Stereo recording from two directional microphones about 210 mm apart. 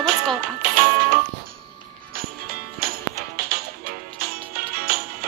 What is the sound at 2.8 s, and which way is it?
Music, 45° right (ahead or behind).